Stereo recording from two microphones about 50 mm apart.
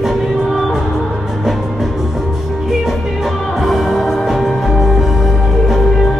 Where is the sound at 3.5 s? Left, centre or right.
Centre.